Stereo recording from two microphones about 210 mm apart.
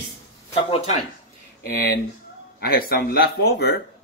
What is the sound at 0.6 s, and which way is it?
Speech, 25° left (ahead or behind).